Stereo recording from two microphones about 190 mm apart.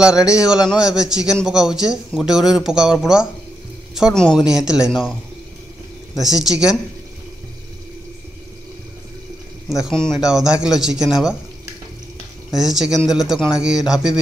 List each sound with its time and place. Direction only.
0.4 s a man's voice: 5° right (ahead or behind)
6.1 s a man's voice: centre (ahead or behind)
9.8 s a man's voice: centre (ahead or behind)
12.4 s a man's voice: centre (ahead or behind)